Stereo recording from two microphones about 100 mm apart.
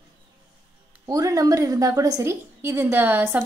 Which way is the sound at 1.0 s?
35° right (ahead or behind).